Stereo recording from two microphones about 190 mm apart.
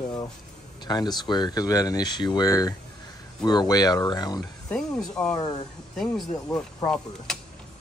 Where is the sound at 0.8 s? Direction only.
20° left (ahead or behind).